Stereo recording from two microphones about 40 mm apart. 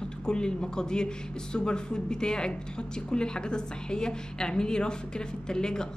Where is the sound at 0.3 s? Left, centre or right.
Left.